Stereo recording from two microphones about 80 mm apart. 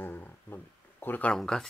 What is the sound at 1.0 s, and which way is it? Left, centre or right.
Speech, left.